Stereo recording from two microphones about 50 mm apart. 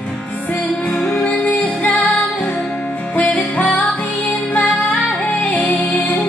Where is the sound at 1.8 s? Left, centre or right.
Left.